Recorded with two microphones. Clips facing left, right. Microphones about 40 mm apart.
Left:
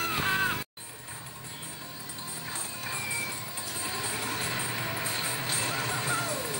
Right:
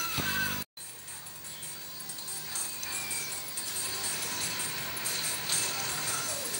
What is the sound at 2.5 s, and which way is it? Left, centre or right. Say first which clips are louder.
Music: left 4 dB; left.